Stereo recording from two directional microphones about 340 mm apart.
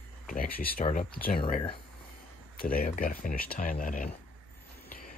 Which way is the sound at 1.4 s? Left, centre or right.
Centre.